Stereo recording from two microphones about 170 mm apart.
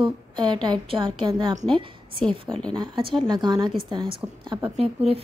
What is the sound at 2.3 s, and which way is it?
Speech, 5° left (ahead or behind).